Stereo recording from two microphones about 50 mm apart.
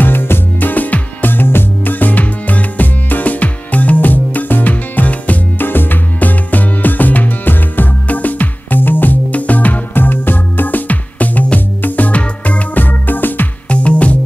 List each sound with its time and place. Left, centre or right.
0.0 s music: left
5.6 s music: left
13.7 s music: left